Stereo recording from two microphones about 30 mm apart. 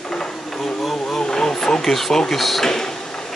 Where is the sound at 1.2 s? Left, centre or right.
Left.